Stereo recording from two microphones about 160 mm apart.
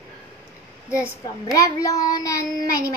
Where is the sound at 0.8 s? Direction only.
15° left (ahead or behind).